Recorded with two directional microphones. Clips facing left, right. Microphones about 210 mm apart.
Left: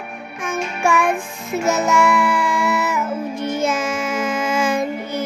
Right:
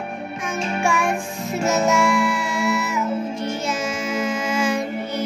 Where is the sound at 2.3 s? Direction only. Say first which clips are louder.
Left 2 dB; 55° left (ahead or behind).